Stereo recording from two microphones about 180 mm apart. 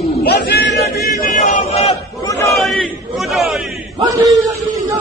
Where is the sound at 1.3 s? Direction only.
40° left (ahead or behind).